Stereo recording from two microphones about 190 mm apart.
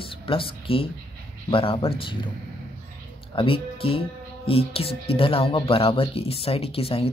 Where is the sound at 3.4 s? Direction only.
30° left (ahead or behind).